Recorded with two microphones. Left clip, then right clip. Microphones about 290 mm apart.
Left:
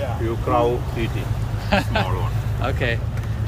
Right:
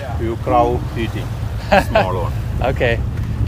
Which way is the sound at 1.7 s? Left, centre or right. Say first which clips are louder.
Right 8 dB; centre.